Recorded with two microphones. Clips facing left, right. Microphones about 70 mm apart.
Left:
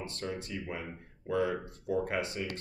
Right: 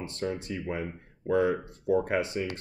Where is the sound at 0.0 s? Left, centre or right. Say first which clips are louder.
Right 5 dB; right.